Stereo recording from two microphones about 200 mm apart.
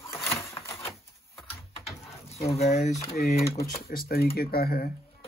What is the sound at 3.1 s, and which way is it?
Speech, 50° left (ahead or behind).